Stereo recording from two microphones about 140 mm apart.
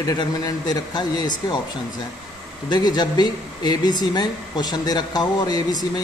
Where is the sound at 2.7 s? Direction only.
30° left (ahead or behind).